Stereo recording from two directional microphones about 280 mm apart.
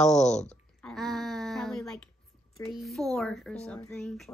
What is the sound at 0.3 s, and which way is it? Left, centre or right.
Speech, left.